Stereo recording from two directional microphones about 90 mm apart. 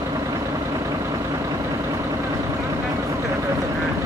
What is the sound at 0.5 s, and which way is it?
Vehicle, 40° right (ahead or behind).